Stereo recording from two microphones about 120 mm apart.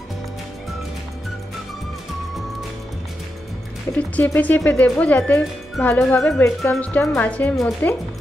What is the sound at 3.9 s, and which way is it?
Speech, 15° left (ahead or behind).